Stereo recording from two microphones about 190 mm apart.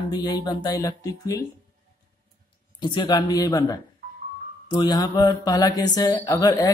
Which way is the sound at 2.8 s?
25° left (ahead or behind).